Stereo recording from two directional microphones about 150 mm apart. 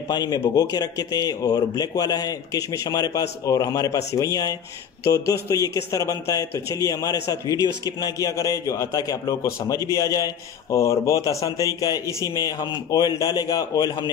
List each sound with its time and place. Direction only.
0.1 s a man's voice: 25° left (ahead or behind)